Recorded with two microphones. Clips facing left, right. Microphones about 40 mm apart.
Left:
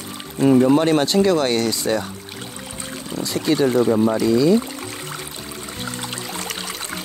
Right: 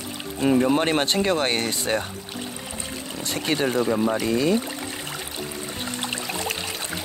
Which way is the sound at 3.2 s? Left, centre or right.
Right.